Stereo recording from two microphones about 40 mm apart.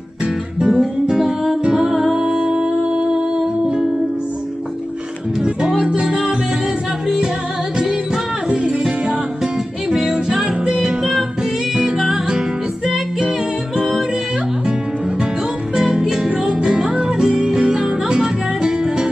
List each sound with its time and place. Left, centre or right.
0.6 s music: centre
6.0 s music: centre
9.4 s music: centre
10.6 s music: right
12.3 s music: right
15.7 s music: centre